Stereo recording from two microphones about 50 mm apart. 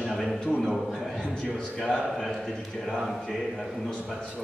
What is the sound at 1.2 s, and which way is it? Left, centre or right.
Speech, centre.